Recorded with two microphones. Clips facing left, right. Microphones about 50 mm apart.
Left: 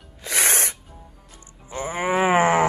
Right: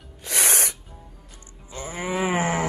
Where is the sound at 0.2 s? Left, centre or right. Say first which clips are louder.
Left 2 dB; left.